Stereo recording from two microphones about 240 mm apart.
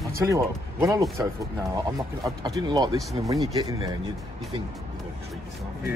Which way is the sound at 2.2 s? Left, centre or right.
Centre.